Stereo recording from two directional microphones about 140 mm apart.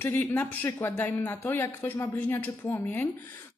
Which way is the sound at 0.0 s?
15° left (ahead or behind).